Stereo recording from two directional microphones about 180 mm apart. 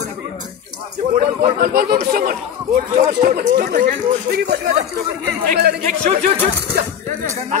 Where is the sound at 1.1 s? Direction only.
55° right (ahead or behind).